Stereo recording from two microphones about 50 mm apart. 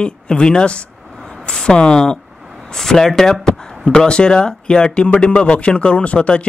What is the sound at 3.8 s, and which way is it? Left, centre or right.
Speech, centre.